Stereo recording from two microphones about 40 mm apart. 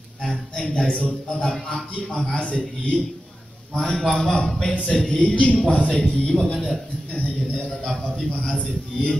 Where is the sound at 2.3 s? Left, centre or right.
Left.